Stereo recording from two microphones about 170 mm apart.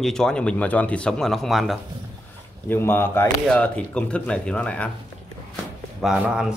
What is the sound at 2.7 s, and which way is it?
Speech, 15° left (ahead or behind).